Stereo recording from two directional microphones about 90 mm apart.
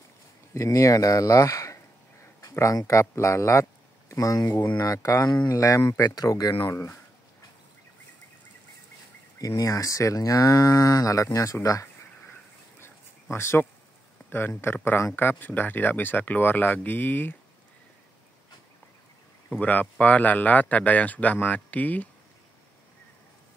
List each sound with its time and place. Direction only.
0.6 s speech: 40° left (ahead or behind)
9.6 s speech: 40° left (ahead or behind)
12.8 s a sound: 30° left (ahead or behind)
14.3 s speech: 25° left (ahead or behind)
19.5 s speech: 20° left (ahead or behind)